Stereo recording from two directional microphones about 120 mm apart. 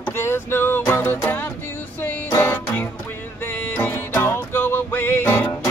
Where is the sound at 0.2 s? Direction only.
20° left (ahead or behind).